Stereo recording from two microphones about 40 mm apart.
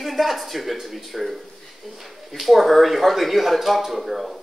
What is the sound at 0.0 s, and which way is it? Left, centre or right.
Speech, centre.